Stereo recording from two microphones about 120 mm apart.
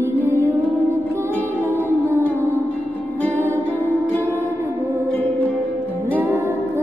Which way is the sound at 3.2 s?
15° left (ahead or behind).